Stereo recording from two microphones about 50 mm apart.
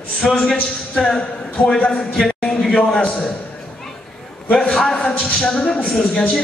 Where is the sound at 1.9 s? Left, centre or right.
Centre.